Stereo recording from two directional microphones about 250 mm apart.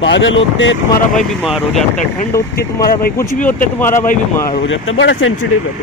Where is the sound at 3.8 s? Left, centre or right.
Centre.